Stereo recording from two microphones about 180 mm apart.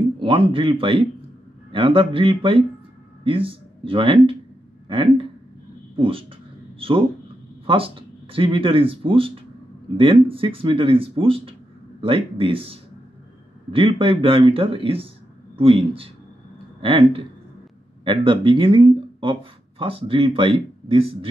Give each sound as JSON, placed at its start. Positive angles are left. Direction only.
{"t": 0.2, "sound": "speech", "side_deg": -30}